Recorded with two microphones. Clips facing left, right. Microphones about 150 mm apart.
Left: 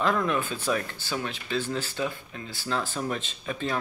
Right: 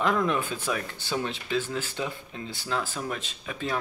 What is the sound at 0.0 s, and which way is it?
Speech, 15° right (ahead or behind).